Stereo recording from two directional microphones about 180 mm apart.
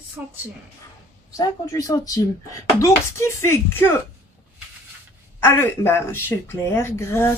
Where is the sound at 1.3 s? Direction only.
20° left (ahead or behind).